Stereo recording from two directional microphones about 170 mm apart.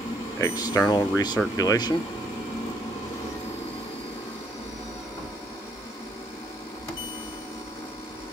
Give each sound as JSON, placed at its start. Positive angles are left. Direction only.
{"t": 0.4, "sound": "speech", "side_deg": 20}